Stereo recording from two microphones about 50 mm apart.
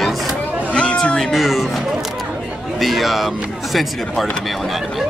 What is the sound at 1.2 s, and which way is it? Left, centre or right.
Speech, centre.